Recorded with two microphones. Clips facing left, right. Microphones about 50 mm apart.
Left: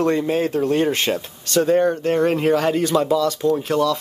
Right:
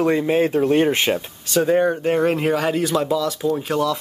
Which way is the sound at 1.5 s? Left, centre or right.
Centre.